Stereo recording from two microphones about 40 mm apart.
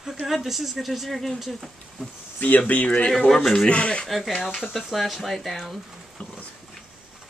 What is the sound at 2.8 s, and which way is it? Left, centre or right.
Speech, left.